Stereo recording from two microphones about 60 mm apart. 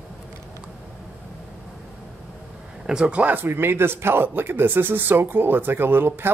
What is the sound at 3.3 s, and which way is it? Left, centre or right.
Speech, right.